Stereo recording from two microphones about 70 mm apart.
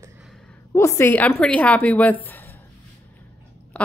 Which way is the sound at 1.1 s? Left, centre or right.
Left.